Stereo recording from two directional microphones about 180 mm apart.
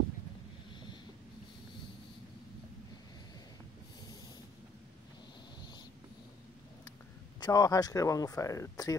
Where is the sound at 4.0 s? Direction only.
25° left (ahead or behind).